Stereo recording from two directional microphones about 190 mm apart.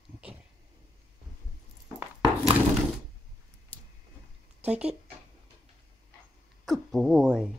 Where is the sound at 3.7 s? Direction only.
10° left (ahead or behind).